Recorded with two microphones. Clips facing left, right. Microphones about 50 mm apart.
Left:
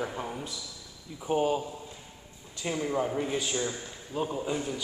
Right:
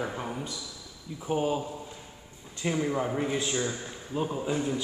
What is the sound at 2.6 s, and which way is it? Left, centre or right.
A man's voice, centre.